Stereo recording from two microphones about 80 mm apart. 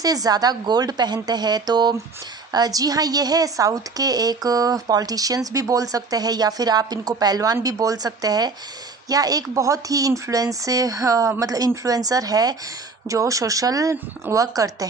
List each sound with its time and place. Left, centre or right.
0.0 s a woman's voice: right
7.5 s a woman's voice: right